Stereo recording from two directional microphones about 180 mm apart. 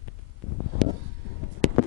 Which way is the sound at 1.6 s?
40° right (ahead or behind).